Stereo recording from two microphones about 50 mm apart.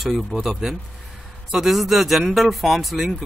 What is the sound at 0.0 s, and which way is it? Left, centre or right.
Speech, centre.